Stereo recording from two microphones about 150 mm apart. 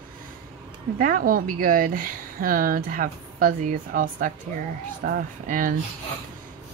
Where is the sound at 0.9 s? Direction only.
70° right (ahead or behind).